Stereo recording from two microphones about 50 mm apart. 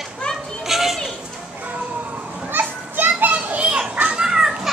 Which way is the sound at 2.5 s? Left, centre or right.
Right.